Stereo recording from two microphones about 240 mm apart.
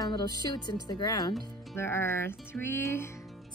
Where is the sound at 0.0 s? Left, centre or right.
Centre.